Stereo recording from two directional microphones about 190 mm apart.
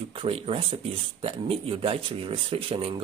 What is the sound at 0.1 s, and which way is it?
Speech, 30° right (ahead or behind).